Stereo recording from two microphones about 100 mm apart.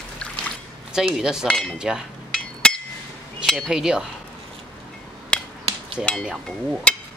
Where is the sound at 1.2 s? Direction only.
5° right (ahead or behind).